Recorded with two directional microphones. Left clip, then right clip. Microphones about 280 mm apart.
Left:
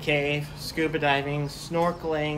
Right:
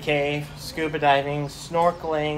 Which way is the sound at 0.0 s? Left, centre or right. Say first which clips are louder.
Right 2 dB; centre.